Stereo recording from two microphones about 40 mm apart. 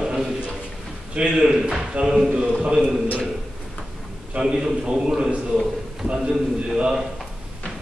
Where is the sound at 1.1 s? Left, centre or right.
Right.